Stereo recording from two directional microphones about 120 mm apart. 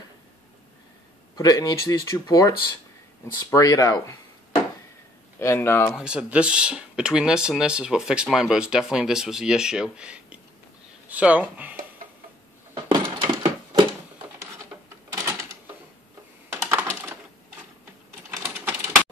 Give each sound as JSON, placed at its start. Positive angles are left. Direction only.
{"t": 1.3, "sound": "speech", "side_deg": 30}
{"t": 5.4, "sound": "speech", "side_deg": 20}
{"t": 5.9, "sound": "speech", "side_deg": -10}
{"t": 12.7, "sound": "a sound", "side_deg": -45}
{"t": 14.7, "sound": "cash register", "side_deg": -20}
{"t": 16.6, "sound": "typing", "side_deg": -20}
{"t": 18.4, "sound": "typing", "side_deg": -15}